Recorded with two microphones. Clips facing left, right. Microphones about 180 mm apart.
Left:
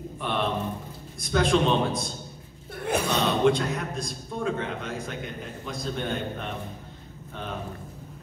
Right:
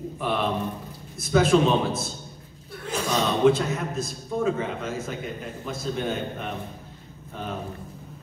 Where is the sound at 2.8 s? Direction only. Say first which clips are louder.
Left 1 dB; 60° left (ahead or behind).